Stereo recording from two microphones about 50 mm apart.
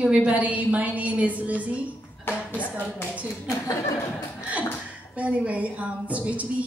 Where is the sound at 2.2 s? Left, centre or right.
Left.